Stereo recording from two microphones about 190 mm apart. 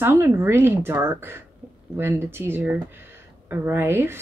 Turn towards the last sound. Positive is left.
turn(degrees=-10)  # may be behind; listen again after turning